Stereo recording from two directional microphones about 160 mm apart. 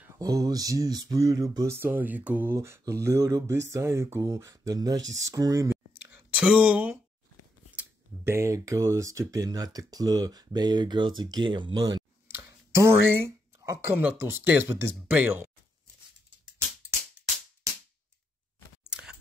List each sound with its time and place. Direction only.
0.2 s speech: 20° right (ahead or behind)
12.3 s a sound: 15° right (ahead or behind)
13.6 s speech: 20° right (ahead or behind)
18.9 s scissors: 5° right (ahead or behind)